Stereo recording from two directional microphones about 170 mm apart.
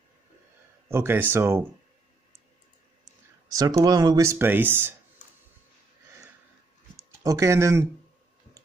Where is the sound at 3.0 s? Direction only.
20° right (ahead or behind).